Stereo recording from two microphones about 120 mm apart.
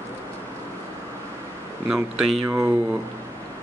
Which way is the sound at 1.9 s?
5° right (ahead or behind).